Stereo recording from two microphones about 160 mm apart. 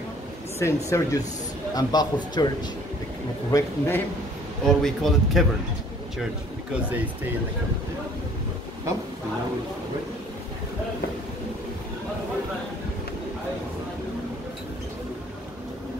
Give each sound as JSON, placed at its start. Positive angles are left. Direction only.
{"t": 0.6, "sound": "a man's voice", "side_deg": 20}
{"t": 3.5, "sound": "a man's voice", "side_deg": 15}
{"t": 4.6, "sound": "speech", "side_deg": 0}